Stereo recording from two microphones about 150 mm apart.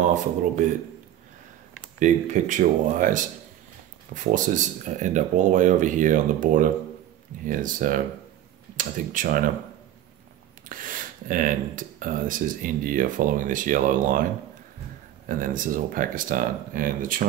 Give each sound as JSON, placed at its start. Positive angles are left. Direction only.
{"t": 2.0, "sound": "speech", "side_deg": -55}
{"t": 10.7, "sound": "speech", "side_deg": -65}
{"t": 15.2, "sound": "speech", "side_deg": -65}